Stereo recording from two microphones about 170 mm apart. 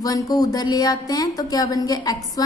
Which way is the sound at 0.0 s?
20° left (ahead or behind).